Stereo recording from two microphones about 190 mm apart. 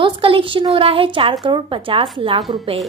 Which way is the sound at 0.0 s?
30° right (ahead or behind).